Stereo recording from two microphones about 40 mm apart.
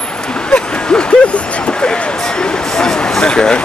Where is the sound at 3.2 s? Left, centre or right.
Left.